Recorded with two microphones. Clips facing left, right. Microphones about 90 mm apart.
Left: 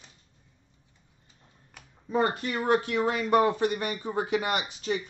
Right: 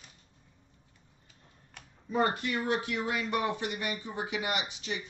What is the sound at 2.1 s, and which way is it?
Speech, 35° left (ahead or behind).